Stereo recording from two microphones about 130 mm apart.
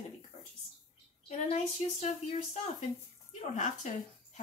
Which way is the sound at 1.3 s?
60° left (ahead or behind).